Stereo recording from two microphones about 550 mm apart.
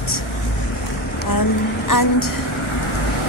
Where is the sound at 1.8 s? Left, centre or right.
Left.